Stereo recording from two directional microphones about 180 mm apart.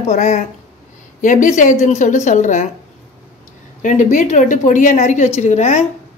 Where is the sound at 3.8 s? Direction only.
45° left (ahead or behind).